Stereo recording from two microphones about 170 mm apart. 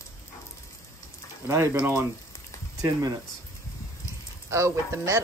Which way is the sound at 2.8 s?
20° right (ahead or behind).